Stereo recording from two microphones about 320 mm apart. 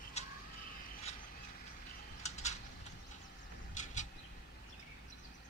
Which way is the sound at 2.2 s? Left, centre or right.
Left.